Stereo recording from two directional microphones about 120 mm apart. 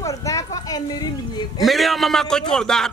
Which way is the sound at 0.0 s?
25° left (ahead or behind).